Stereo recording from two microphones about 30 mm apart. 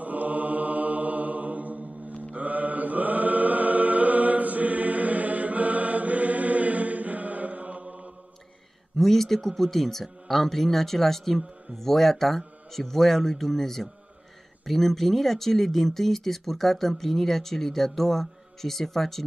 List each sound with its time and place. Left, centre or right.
0.0 s mantra: right
7.8 s mantra: right
8.9 s speech: centre
10.0 s speech: centre
10.4 s speech: centre